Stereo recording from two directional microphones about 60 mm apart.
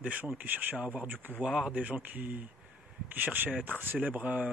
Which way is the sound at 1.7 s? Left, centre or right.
Right.